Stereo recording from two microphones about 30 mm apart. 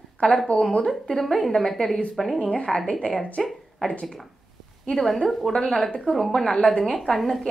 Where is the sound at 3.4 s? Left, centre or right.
Centre.